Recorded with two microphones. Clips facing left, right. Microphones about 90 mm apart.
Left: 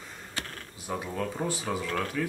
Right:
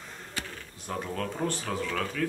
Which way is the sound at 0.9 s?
5° left (ahead or behind).